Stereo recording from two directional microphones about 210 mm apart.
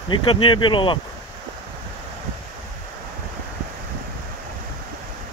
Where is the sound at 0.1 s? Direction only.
25° left (ahead or behind).